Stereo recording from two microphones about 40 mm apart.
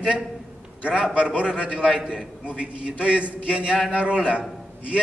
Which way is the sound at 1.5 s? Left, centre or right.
Right.